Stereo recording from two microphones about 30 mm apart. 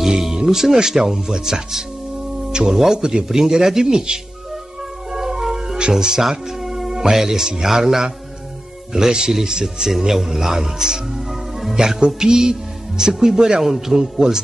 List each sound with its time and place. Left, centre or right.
0.5 s speech: centre
3.0 s speech: right
5.1 s music: centre
5.8 s speech: right
9.8 s speech: centre